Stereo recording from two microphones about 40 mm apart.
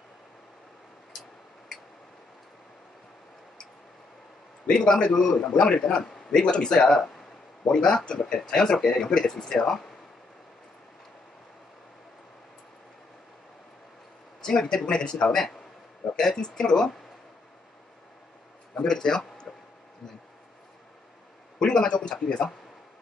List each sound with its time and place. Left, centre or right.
4.6 s a man's voice: centre
14.4 s a man's voice: centre
18.8 s speech: centre
21.6 s a man's voice: left